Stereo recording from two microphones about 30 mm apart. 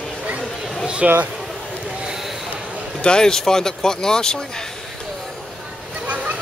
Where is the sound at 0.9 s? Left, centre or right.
Right.